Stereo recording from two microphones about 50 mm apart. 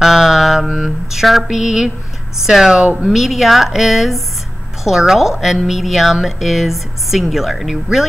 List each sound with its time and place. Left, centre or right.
0.0 s mantra: centre
2.4 s speech: centre
3.1 s a woman's voice: centre